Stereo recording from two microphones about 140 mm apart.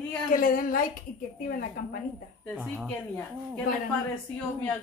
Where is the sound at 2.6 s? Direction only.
Centre (ahead or behind).